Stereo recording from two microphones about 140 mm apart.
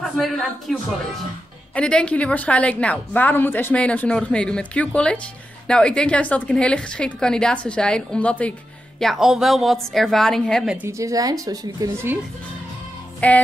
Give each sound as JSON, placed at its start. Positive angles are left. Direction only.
{"t": 0.0, "sound": "a woman's voice", "side_deg": 0}
{"t": 1.8, "sound": "a woman's voice", "side_deg": 5}
{"t": 9.0, "sound": "a woman's voice", "side_deg": 0}
{"t": 10.9, "sound": "a woman's voice", "side_deg": -25}
{"t": 13.2, "sound": "a woman's voice", "side_deg": 10}